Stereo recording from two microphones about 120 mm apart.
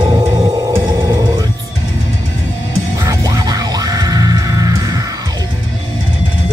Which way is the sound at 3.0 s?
25° right (ahead or behind).